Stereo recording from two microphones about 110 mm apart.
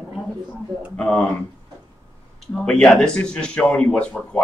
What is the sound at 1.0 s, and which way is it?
Speech, 5° left (ahead or behind).